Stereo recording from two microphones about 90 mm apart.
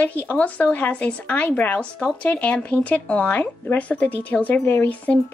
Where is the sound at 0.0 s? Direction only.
20° left (ahead or behind).